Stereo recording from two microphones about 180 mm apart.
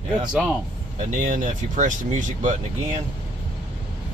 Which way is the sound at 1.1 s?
45° right (ahead or behind).